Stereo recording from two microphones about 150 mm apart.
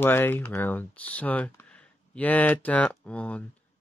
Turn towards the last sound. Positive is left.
turn(degrees=10)  # may be behind; listen again after turning